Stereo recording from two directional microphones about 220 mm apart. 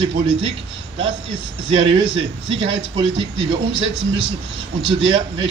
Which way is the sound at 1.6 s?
25° right (ahead or behind).